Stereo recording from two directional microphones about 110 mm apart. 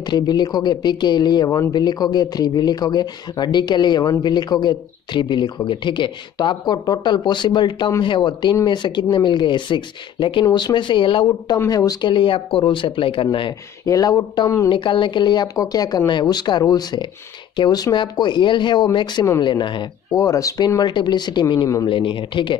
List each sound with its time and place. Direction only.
0.1 s speech: 40° left (ahead or behind)
13.8 s speech: 35° left (ahead or behind)
20.2 s speech: 30° left (ahead or behind); by 22.6 s 50° left (ahead or behind)